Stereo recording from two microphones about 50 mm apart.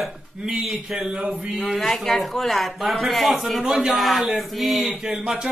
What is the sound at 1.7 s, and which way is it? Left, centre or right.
Speech, centre.